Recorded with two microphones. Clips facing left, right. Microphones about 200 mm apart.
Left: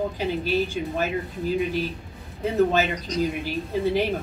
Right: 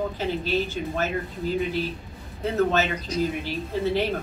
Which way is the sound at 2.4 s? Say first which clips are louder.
Left 2 dB; 15° left (ahead or behind).